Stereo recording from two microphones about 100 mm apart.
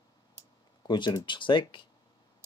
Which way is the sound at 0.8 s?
50° left (ahead or behind).